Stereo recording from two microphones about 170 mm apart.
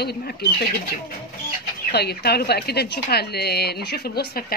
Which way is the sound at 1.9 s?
70° left (ahead or behind).